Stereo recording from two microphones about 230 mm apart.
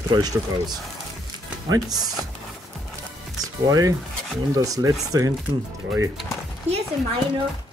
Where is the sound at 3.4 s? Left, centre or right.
Centre.